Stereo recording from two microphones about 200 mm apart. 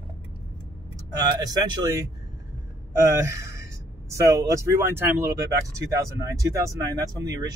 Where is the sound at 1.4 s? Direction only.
20° right (ahead or behind).